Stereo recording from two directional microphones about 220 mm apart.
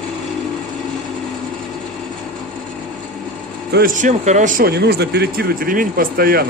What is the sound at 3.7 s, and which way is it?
Speech, 40° right (ahead or behind).